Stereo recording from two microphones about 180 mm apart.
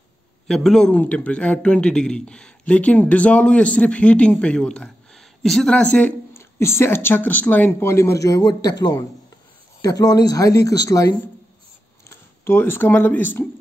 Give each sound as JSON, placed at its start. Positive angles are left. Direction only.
{"t": 0.5, "sound": "a man's voice", "side_deg": 0}